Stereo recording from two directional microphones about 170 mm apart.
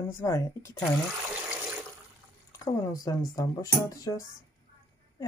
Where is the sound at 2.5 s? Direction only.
20° left (ahead or behind).